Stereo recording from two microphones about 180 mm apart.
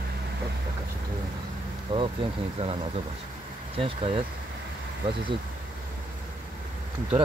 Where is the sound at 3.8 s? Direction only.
30° right (ahead or behind).